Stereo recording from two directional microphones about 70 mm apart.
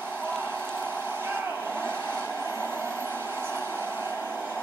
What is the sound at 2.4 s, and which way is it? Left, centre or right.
Hair dryer, right.